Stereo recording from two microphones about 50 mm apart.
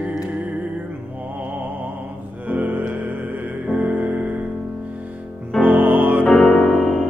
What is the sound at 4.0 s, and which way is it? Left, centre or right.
Music, right.